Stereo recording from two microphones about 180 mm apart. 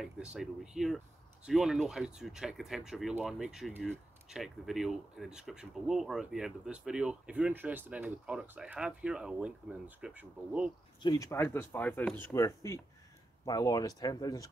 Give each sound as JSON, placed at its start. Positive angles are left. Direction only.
{"t": 0.0, "sound": "speech", "side_deg": -5}
{"t": 11.0, "sound": "speech", "side_deg": 20}